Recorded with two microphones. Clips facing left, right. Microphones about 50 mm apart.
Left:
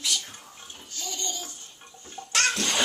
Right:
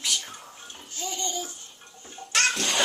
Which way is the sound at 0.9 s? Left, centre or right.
Right.